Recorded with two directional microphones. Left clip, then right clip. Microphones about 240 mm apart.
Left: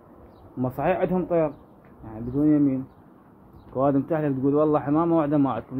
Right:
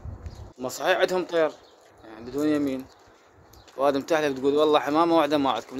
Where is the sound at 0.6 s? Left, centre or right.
Right.